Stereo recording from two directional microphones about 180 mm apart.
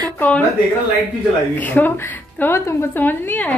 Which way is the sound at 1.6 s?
10° left (ahead or behind).